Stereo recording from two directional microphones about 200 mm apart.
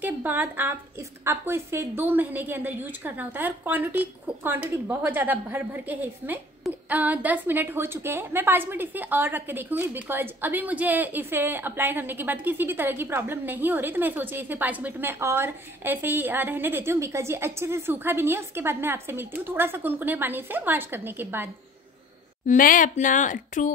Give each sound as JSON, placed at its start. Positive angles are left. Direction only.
{"t": 0.0, "sound": "a woman's voice", "side_deg": -10}
{"t": 22.5, "sound": "speech", "side_deg": 45}